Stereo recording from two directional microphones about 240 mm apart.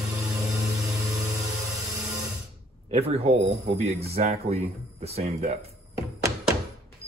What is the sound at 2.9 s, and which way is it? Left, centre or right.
Speech, right.